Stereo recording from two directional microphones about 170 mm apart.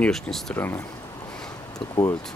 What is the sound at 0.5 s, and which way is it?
Speech, 15° left (ahead or behind).